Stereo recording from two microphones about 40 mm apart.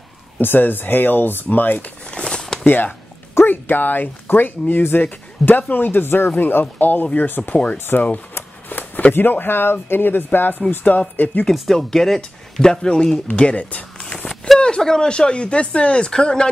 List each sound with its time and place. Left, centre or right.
0.4 s speech: left
2.2 s a sound: centre
2.6 s speech: left
7.7 s speech: left
8.4 s shuffling cards: left
9.1 s speech: left
10.9 s speech: left
11.7 s speech: centre
13.3 s speech: left
13.9 s a sound: left
14.9 s speech: left